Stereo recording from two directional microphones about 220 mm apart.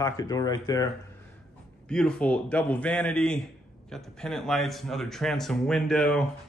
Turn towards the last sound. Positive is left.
turn(degrees=5)  # may be behind; listen again after turning